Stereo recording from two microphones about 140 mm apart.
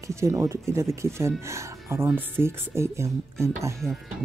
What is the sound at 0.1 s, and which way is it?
Speech, 20° right (ahead or behind).